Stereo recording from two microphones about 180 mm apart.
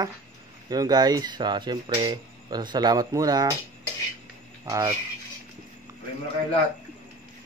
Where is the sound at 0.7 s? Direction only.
20° right (ahead or behind).